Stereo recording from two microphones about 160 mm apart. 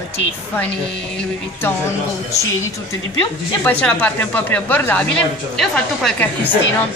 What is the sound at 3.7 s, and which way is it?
A woman's voice, 10° left (ahead or behind).